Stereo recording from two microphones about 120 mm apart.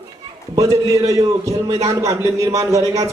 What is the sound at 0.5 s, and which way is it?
A man's voice, 25° right (ahead or behind).